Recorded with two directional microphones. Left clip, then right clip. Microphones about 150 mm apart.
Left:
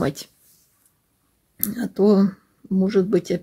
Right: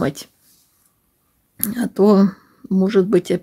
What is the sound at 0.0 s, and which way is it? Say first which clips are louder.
Speech: right 2 dB; 15° right (ahead or behind).